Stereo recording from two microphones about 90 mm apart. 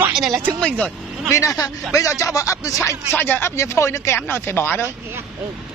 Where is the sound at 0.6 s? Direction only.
15° left (ahead or behind).